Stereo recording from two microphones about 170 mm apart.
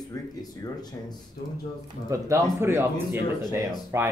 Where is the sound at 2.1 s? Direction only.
20° right (ahead or behind).